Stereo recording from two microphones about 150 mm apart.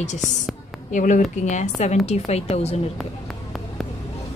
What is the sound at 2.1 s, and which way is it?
Speech, 45° left (ahead or behind).